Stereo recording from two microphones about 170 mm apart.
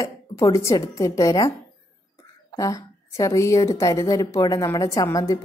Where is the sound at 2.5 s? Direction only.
20° left (ahead or behind).